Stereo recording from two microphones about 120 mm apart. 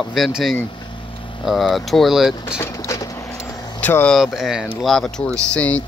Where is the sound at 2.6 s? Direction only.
25° left (ahead or behind).